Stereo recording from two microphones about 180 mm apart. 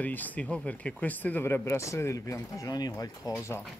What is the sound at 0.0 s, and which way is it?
A man's voice, 10° left (ahead or behind).